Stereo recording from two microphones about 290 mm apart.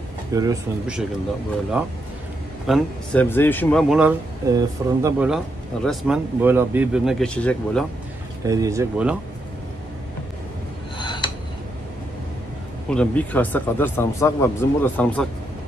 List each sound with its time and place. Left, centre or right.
0.3 s speech: centre
4.5 s speech: centre
8.5 s speech: centre
11.0 s a sound: centre
12.9 s speech: centre